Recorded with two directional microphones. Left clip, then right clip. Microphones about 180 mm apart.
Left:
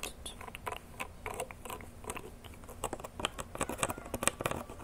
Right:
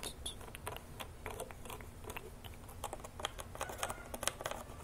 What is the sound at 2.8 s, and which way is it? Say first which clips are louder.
Computer keyboard: left 6 dB; 20° left (ahead or behind).